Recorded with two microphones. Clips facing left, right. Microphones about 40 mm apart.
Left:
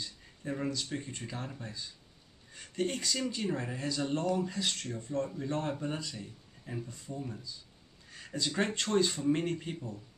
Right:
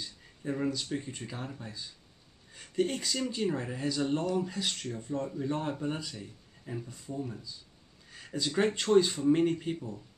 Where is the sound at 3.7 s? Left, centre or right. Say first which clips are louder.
Right 3 dB; centre.